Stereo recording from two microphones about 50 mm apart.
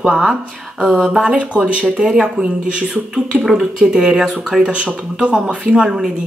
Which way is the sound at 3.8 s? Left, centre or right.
Centre.